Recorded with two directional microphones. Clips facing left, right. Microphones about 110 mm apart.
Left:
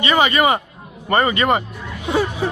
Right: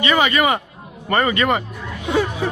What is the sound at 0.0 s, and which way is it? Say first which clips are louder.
A man's voice: left 1 dB; 30° left (ahead or behind).